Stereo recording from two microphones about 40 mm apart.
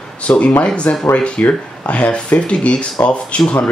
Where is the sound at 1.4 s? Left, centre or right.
Left.